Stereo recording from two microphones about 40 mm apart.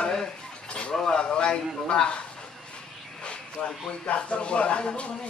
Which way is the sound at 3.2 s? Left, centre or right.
Left.